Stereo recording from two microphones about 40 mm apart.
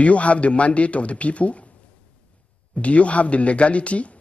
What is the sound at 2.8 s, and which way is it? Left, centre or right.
Speech, left.